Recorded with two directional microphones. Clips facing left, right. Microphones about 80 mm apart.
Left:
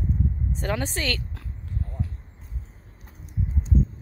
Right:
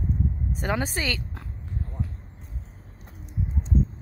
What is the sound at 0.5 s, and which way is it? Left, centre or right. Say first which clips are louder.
Speech: right 1 dB; centre.